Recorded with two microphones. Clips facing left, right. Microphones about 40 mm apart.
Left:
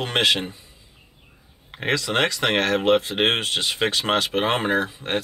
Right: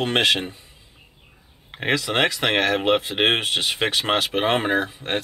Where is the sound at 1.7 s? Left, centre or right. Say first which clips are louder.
Right 1 dB; centre.